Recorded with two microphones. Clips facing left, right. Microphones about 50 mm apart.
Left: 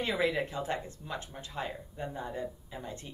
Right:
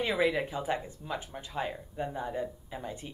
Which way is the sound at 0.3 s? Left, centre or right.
Centre.